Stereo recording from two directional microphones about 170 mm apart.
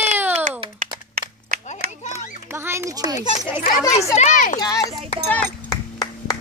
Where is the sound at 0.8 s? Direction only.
55° right (ahead or behind).